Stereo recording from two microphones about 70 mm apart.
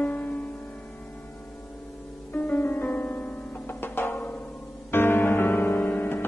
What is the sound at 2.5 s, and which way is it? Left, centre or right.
Music, left.